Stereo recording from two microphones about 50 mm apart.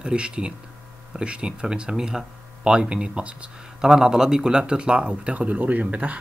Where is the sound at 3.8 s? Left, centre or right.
Centre.